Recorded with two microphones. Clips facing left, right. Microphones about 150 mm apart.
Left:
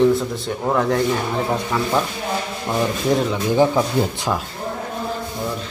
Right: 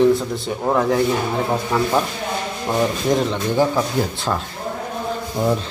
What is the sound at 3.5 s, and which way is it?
Speech, 15° left (ahead or behind).